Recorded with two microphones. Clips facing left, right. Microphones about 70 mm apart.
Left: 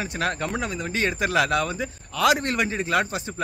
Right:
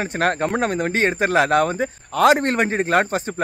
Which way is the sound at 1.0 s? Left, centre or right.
Right.